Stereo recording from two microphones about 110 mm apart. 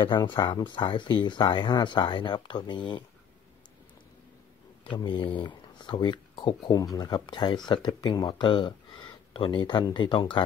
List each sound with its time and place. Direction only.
0.0 s speech: 45° left (ahead or behind)
4.8 s speech: 45° left (ahead or behind)